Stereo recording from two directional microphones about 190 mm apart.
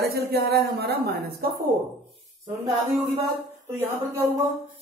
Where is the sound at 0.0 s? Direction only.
60° right (ahead or behind).